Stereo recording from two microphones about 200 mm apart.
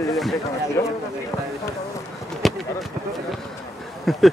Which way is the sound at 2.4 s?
Centre (ahead or behind).